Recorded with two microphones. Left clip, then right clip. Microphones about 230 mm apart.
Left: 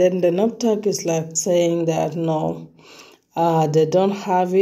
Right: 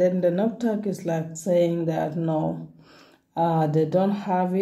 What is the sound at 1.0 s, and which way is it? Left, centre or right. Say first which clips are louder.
Speech: left 6 dB; left.